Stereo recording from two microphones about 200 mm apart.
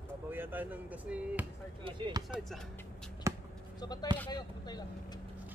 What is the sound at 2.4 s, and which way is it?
Speech, centre (ahead or behind).